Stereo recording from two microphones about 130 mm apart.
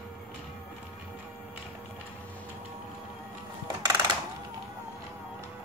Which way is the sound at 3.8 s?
30° right (ahead or behind).